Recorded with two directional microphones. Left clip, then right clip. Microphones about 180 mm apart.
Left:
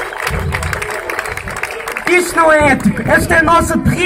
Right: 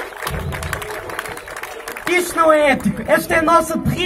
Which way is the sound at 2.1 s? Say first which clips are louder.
Left 4 dB; 10° right (ahead or behind).